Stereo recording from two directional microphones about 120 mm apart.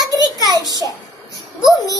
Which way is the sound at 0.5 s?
30° right (ahead or behind).